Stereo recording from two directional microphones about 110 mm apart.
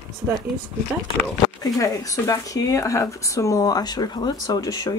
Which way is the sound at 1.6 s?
30° left (ahead or behind).